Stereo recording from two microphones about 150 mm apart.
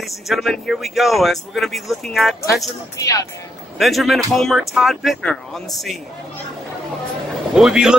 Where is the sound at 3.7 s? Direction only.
Centre (ahead or behind).